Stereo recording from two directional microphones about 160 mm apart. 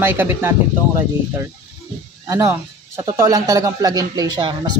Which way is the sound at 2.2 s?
15° right (ahead or behind).